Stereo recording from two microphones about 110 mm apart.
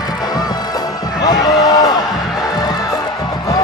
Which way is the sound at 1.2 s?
35° left (ahead or behind).